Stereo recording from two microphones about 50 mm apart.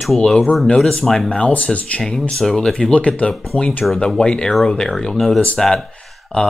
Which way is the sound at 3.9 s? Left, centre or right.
Centre.